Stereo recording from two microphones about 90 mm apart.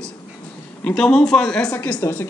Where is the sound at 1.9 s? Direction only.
30° left (ahead or behind).